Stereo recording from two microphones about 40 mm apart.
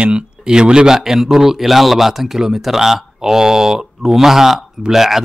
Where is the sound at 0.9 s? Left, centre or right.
Centre.